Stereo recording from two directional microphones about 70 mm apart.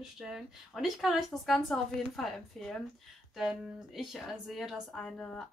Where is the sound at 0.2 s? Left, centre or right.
Centre.